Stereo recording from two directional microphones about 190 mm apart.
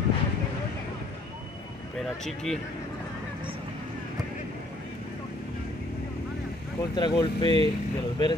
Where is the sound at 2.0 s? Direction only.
Centre (ahead or behind).